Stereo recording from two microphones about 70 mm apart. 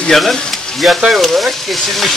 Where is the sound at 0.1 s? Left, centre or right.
Centre.